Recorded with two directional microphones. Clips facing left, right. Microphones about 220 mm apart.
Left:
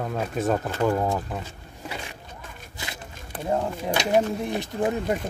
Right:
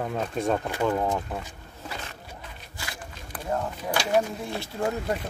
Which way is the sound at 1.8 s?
10° left (ahead or behind).